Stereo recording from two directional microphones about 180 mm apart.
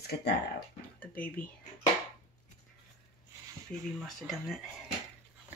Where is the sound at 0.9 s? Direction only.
10° left (ahead or behind).